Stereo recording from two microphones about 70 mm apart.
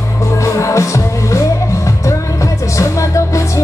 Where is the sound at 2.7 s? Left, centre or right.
Left.